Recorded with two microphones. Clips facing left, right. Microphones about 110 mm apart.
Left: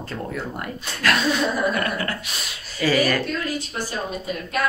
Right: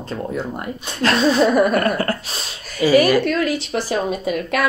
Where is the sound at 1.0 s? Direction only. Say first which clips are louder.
Right 6 dB; 30° right (ahead or behind).